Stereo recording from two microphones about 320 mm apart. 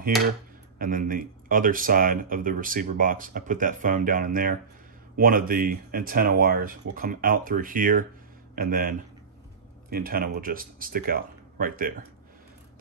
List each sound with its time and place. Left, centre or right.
0.7 s speech: right